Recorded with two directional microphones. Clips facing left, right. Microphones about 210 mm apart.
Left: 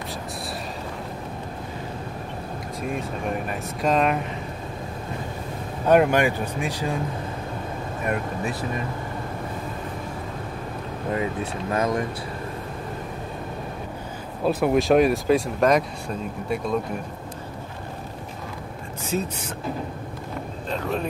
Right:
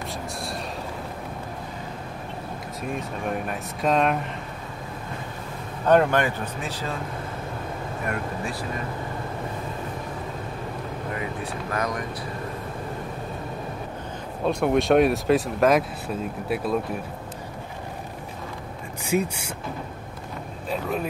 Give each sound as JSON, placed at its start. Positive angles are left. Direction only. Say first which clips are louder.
{"t": 2.9, "sound": "speech", "louder": "even", "side_deg": 0}
{"t": 5.9, "sound": "speech", "louder": "left 1 dB", "side_deg": 10}
{"t": 8.1, "sound": "speech", "louder": "left 4 dB", "side_deg": 20}
{"t": 11.7, "sound": "speech", "louder": "left 5 dB", "side_deg": 25}
{"t": 14.4, "sound": "speech", "louder": "left 1 dB", "side_deg": 5}
{"t": 19.0, "sound": "speech", "louder": "right 3 dB", "side_deg": -10}
{"t": 20.7, "sound": "speech", "louder": "even", "side_deg": -5}